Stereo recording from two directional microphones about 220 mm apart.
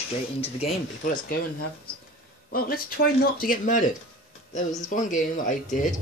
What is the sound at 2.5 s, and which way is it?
A man's voice, 40° left (ahead or behind).